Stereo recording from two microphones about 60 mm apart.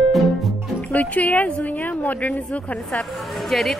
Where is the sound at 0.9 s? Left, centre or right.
Left.